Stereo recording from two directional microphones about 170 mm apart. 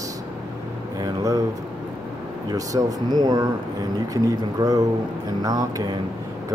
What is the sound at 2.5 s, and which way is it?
Speech, 20° right (ahead or behind).